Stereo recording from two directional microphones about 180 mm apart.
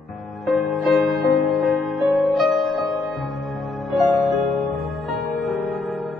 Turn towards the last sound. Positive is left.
turn(degrees=0)  # may be behind; listen again after turning